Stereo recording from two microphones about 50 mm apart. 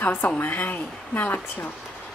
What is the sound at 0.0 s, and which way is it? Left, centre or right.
A woman's voice, left.